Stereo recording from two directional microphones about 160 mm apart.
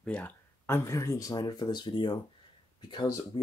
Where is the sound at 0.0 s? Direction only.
10° left (ahead or behind).